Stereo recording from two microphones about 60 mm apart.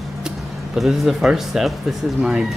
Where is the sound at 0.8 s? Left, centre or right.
Centre.